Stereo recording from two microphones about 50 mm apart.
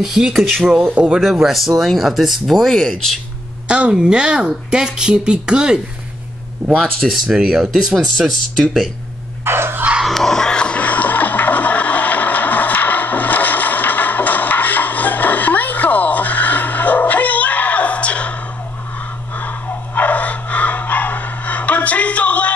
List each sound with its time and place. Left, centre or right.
0.0 s speech: centre
3.6 s speech: right
6.8 s speech: centre
7.4 s speech: centre
8.2 s speech: centre
9.4 s dog: right
10.0 s a sound: centre; by 18.4 s left
19.3 s dog: left